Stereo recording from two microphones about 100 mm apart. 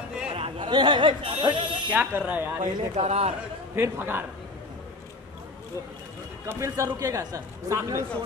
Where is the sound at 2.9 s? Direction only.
90° right.